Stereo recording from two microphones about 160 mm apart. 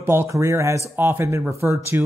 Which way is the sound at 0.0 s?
15° right (ahead or behind).